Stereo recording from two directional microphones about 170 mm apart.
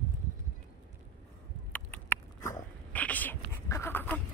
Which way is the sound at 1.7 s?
10° left (ahead or behind).